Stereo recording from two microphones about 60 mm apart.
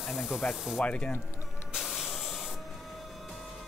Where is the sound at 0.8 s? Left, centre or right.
Centre.